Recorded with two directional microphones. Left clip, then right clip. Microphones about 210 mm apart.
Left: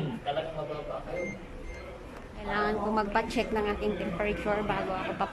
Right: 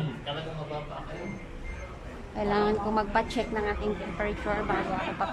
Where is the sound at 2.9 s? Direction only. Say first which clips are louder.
Right 1 dB; 5° left (ahead or behind).